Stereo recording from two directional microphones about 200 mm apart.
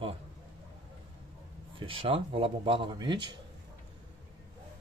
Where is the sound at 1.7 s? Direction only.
25° right (ahead or behind).